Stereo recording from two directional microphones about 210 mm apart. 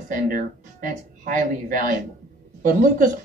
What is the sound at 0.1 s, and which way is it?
A woman's voice, 40° right (ahead or behind).